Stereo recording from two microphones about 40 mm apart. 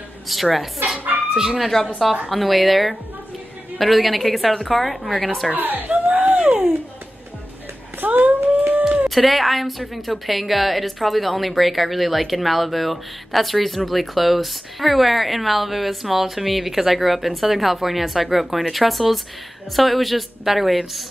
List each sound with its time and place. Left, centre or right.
0.3 s a woman's voice: centre
5.5 s speech: right
5.9 s a sound: right
8.0 s humming: right
8.8 s a sound: right
9.1 s a woman's voice: centre